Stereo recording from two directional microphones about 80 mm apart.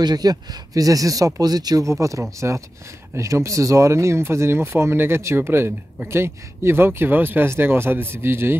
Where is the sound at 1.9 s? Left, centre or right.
Right.